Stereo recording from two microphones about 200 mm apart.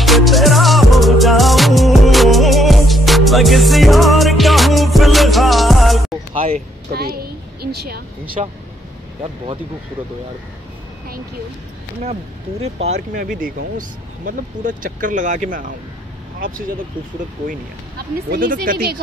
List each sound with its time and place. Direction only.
0.0 s music: centre (ahead or behind)
6.3 s vehicle: 30° right (ahead or behind)
6.9 s speech: 50° right (ahead or behind)
8.4 s speech: 35° right (ahead or behind)
12.6 s speech: 30° right (ahead or behind); by 18.9 s 50° right (ahead or behind)